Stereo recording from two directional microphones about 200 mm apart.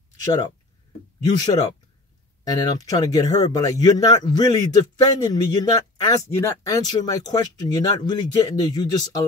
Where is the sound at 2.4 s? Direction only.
20° left (ahead or behind).